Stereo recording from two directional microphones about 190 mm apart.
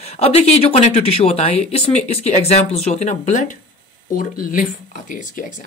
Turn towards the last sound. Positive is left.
turn(degrees=45)  # may be behind; listen again after turning